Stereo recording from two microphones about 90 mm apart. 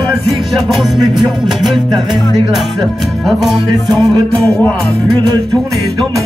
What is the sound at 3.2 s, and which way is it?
Music, centre (ahead or behind).